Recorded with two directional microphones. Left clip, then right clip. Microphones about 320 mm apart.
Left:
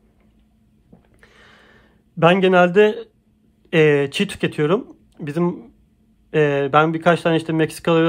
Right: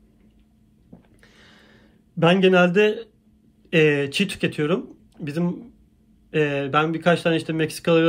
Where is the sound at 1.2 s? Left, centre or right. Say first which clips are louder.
Left 7 dB; centre.